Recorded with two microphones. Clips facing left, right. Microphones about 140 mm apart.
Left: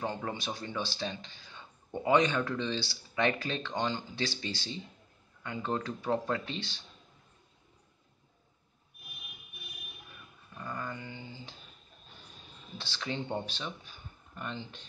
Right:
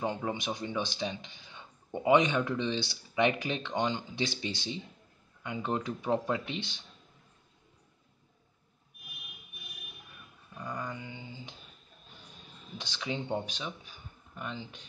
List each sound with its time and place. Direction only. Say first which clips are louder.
0.0 s speech: right 2 dB; 15° right (ahead or behind)
10.6 s a sound: right 1 dB; 15° right (ahead or behind)
12.7 s speech: right 1 dB; 15° right (ahead or behind)